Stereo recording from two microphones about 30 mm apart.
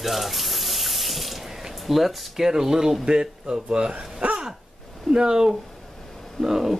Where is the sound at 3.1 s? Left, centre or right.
Right.